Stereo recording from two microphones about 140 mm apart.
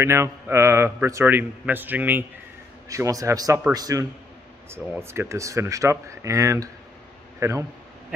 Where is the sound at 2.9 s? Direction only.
25° right (ahead or behind).